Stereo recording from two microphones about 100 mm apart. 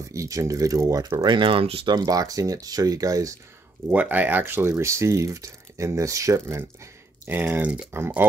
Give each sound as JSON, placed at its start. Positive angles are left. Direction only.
{"t": 0.1, "sound": "speech", "side_deg": -30}
{"t": 1.9, "sound": "speech", "side_deg": -40}
{"t": 3.9, "sound": "speech", "side_deg": -15}